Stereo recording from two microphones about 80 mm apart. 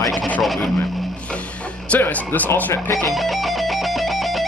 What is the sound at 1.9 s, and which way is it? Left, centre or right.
Speech, left.